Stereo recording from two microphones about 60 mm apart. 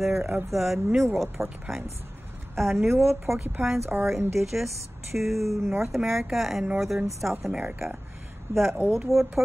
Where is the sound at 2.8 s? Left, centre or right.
Right.